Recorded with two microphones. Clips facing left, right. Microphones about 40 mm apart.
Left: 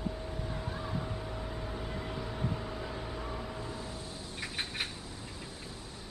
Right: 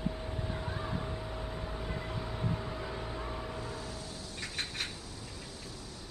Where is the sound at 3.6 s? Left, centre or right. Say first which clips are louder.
Even; left.